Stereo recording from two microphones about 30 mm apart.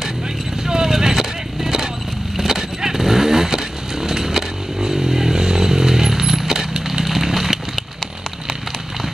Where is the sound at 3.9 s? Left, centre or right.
Centre.